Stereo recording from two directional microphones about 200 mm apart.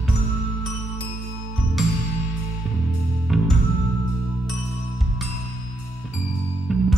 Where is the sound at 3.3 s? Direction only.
Centre (ahead or behind).